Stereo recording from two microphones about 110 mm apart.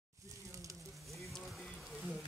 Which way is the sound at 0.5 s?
30° right (ahead or behind).